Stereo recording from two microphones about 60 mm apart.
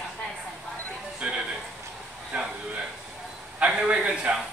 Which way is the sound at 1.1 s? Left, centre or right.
Centre.